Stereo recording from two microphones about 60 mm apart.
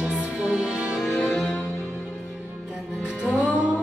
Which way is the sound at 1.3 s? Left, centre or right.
Centre.